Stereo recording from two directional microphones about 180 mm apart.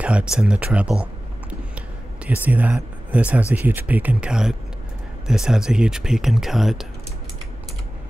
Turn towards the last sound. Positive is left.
turn(degrees=0)  # may be behind; listen again after turning